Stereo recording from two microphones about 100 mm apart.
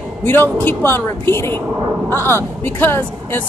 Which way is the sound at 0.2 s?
20° left (ahead or behind).